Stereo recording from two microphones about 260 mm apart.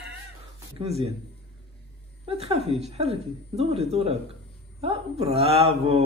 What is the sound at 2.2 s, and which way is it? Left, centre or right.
A woman's voice, right.